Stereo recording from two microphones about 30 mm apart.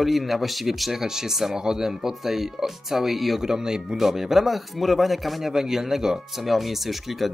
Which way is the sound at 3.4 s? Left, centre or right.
Right.